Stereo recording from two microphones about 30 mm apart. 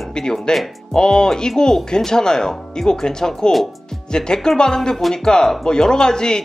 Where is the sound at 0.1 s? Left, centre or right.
Centre.